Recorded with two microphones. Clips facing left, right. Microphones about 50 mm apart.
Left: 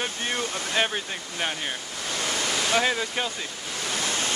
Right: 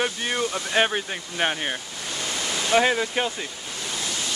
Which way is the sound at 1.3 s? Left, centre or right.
Right.